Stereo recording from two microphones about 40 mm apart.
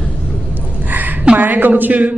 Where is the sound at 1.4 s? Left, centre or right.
Right.